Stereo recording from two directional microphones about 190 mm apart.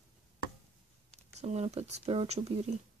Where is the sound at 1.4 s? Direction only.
35° right (ahead or behind).